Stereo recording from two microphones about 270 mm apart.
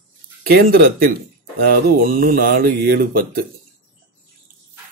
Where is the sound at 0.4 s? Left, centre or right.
Right.